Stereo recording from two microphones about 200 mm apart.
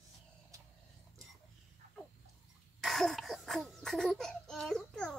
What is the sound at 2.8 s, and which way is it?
Cough, centre (ahead or behind).